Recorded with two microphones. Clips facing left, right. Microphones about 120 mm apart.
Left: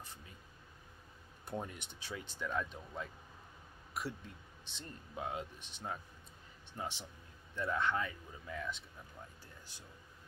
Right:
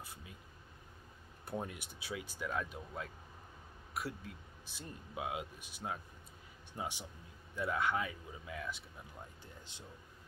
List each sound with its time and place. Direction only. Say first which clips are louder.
1.4 s speech: right 1 dB; 10° right (ahead or behind)
9.4 s speech: right 3 dB; 20° right (ahead or behind)